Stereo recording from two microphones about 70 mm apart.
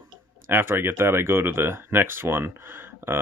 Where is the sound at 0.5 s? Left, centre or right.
Right.